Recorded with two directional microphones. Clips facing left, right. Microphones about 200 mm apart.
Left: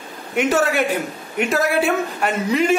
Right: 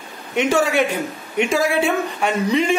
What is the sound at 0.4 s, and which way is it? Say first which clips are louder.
A man's voice: right 1 dB; 5° left (ahead or behind).